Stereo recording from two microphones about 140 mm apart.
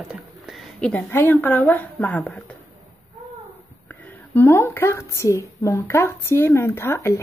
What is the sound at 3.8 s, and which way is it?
Speech, 15° left (ahead or behind).